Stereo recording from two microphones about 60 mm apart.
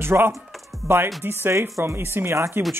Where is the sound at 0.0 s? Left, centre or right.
Right.